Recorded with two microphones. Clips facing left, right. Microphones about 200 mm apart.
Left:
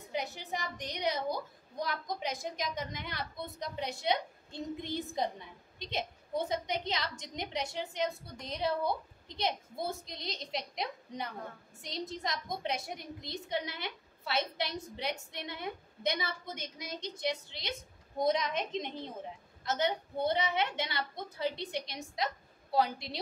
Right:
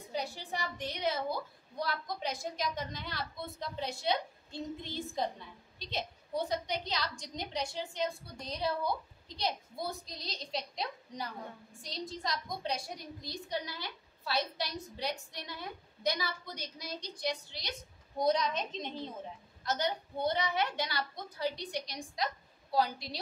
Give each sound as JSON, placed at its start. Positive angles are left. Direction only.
{"t": 0.1, "sound": "a woman's voice", "side_deg": 20}